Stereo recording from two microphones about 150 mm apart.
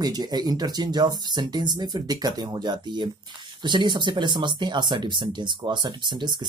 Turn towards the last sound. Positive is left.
turn(degrees=-30)  # may be behind; listen again after turning